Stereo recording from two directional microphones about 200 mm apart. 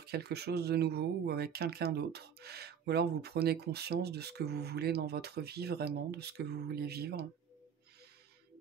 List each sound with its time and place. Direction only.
0.0 s speech: 55° right (ahead or behind)